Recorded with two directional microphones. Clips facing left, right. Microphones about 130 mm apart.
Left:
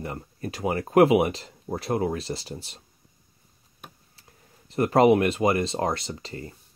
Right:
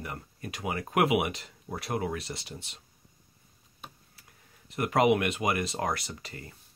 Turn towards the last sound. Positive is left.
turn(degrees=30)  # may be behind; listen again after turning